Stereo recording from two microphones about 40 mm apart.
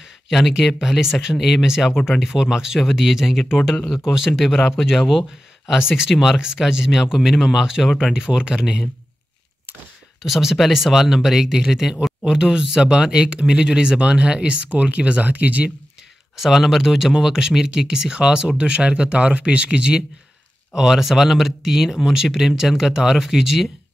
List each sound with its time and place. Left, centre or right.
0.3 s speech: centre
4.6 s speech: centre
10.2 s speech: centre; by 15.7 s right
16.3 s speech: centre